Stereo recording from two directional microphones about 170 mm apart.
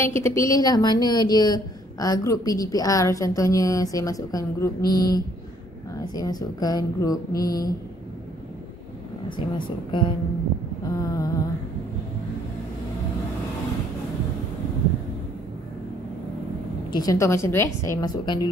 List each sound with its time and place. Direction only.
0.0 s a woman's voice: 15° left (ahead or behind)
9.6 s a woman's voice: 30° left (ahead or behind)
10.8 s a sound: 20° left (ahead or behind)
16.9 s a woman's voice: 20° left (ahead or behind)